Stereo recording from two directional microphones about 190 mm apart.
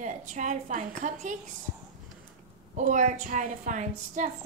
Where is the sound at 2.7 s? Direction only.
40° right (ahead or behind).